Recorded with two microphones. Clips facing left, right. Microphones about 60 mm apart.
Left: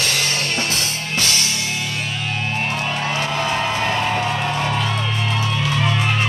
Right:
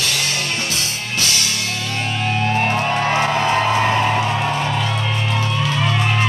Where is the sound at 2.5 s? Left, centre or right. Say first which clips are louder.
Right 4 dB; right.